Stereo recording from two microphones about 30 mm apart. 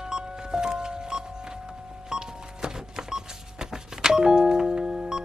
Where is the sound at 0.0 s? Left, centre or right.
Right.